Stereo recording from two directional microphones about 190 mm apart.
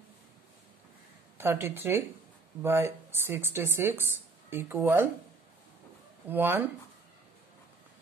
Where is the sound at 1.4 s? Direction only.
10° right (ahead or behind).